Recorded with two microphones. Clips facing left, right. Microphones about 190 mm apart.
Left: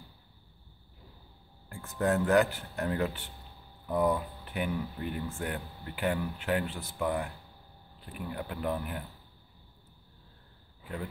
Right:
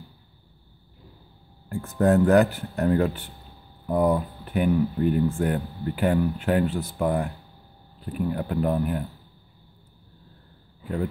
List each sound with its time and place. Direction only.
1.8 s speech: 45° right (ahead or behind)